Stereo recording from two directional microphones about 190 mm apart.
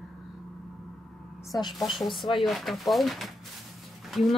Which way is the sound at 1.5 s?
20° left (ahead or behind).